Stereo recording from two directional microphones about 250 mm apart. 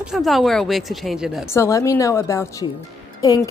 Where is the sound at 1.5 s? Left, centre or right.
Centre.